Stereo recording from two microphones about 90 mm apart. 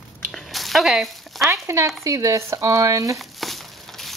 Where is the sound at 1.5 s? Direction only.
35° right (ahead or behind).